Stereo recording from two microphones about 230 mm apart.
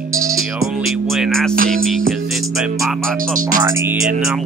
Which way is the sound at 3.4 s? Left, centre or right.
Right.